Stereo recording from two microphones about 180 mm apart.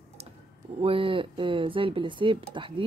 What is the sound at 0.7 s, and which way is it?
Speech, 30° right (ahead or behind).